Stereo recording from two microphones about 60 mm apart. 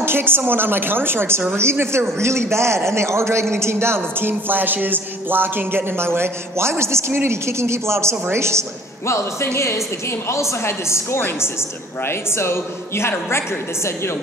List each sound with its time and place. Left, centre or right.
0.0 s a woman's voice: right
9.0 s speech: left